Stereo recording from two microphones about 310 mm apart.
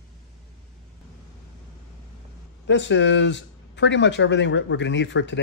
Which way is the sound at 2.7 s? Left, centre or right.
Left.